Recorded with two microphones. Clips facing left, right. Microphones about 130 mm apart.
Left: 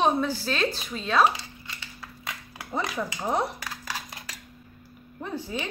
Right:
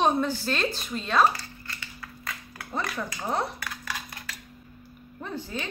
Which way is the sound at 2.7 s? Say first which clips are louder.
Left 2 dB; 15° left (ahead or behind).